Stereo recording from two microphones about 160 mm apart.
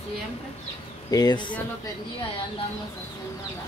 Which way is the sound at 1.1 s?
25° left (ahead or behind).